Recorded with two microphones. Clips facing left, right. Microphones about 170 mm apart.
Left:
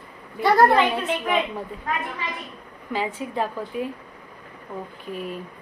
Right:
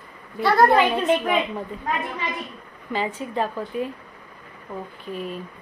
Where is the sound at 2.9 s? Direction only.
10° left (ahead or behind).